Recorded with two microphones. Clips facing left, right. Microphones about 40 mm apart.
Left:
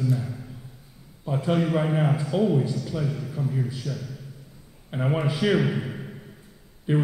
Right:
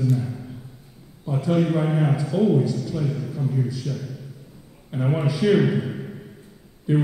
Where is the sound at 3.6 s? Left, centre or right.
Left.